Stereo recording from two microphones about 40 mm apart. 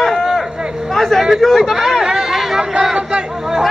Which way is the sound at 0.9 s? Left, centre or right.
Centre.